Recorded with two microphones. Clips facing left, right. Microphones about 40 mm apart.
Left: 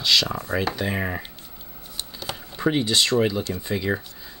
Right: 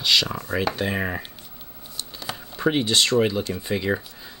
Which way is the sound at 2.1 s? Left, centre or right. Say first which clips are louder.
Even; centre.